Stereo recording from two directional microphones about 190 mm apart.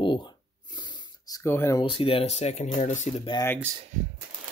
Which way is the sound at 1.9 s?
30° left (ahead or behind).